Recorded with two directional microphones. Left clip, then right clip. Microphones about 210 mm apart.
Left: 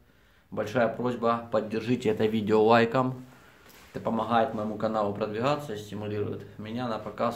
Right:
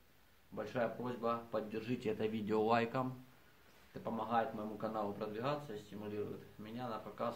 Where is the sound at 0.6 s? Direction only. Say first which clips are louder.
Left 12 dB; 20° left (ahead or behind).